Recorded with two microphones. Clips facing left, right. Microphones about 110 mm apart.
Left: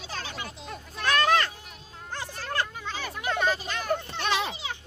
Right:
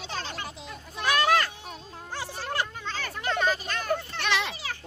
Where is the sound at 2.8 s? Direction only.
10° left (ahead or behind).